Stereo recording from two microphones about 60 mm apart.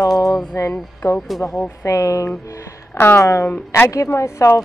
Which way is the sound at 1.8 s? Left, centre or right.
Left.